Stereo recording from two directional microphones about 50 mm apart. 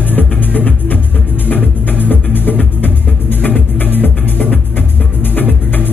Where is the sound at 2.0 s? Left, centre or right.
Left.